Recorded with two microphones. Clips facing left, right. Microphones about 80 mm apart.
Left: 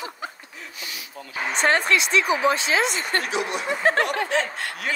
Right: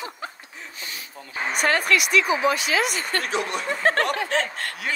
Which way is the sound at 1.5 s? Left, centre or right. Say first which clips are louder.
Left 1 dB; left.